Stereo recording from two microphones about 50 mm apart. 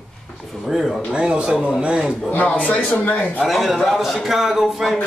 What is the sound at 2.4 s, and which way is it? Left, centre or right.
Speech, left.